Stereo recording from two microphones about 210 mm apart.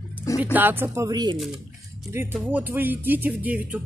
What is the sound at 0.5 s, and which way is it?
Speech, 10° right (ahead or behind).